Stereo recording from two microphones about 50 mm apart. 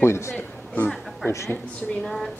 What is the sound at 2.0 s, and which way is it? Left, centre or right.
Speech, centre.